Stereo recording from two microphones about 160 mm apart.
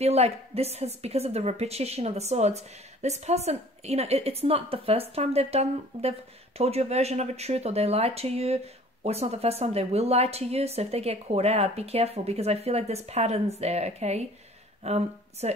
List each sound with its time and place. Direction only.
0.0 s a woman's voice: 40° right (ahead or behind)